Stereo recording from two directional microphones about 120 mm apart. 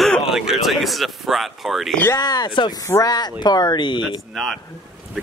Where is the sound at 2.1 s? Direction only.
40° left (ahead or behind).